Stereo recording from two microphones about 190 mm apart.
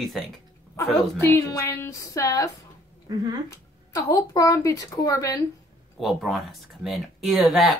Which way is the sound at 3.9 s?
15° left (ahead or behind).